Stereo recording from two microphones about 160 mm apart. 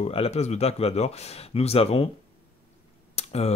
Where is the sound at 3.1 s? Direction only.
40° left (ahead or behind).